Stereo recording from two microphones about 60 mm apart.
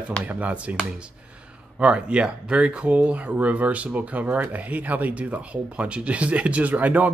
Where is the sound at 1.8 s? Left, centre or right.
Centre.